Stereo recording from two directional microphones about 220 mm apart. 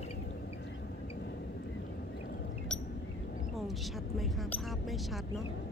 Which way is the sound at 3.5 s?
Centre (ahead or behind).